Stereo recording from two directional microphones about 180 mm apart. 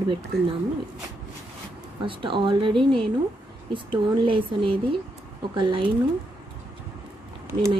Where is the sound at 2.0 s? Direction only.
25° right (ahead or behind).